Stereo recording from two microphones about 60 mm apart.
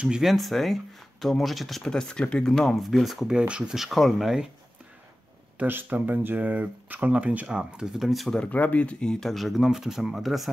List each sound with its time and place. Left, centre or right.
0.2 s speech: centre
2.7 s speech: centre
3.3 s speech: centre
3.7 s speech: centre
5.6 s speech: right; by 8.3 s centre
8.5 s speech: left
9.3 s speech: centre